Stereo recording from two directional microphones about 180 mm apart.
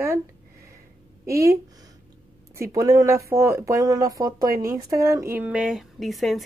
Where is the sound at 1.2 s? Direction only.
15° right (ahead or behind).